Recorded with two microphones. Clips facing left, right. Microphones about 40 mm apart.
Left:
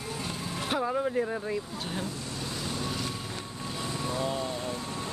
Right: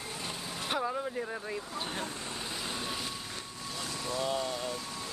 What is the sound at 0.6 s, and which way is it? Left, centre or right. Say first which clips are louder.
Speech: left 4 dB; centre.